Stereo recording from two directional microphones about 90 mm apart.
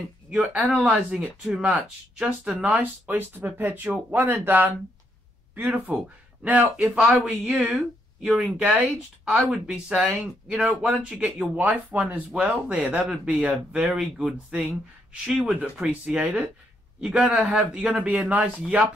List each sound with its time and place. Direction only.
0.3 s speech: 10° right (ahead or behind)
13.0 s speech: 5° right (ahead or behind)
13.9 s speech: 5° right (ahead or behind)